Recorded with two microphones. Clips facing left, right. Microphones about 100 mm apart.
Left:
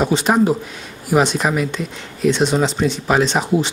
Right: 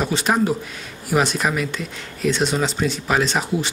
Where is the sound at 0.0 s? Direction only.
5° left (ahead or behind).